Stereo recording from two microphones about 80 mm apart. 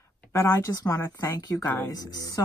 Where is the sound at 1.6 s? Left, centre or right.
Left.